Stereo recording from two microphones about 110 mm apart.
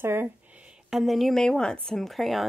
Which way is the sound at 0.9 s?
Centre (ahead or behind).